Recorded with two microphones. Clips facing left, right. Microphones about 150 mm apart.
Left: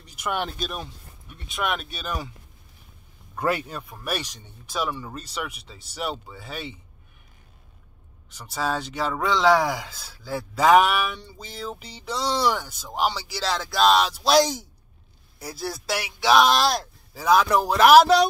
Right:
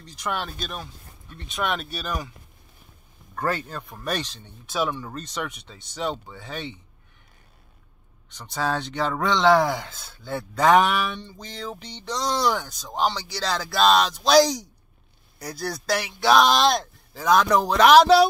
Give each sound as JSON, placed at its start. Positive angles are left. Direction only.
{"t": 0.0, "sound": "speech", "side_deg": 10}
{"t": 0.6, "sound": "speech", "side_deg": 5}
{"t": 3.3, "sound": "speech", "side_deg": 10}
{"t": 4.6, "sound": "speech", "side_deg": 0}
{"t": 8.3, "sound": "speech", "side_deg": 5}